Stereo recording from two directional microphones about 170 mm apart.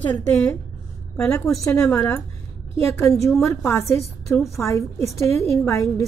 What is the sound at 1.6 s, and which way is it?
A woman's voice, 15° left (ahead or behind).